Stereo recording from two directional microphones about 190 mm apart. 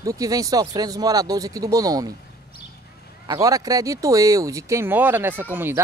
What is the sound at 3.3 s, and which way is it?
Speech, 20° right (ahead or behind).